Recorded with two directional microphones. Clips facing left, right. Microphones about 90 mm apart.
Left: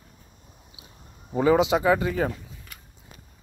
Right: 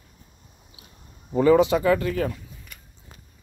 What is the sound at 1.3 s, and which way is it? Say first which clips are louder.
Speech: right 3 dB; 10° left (ahead or behind).